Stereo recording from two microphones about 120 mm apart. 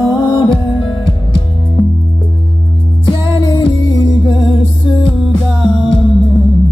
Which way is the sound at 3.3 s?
45° left (ahead or behind).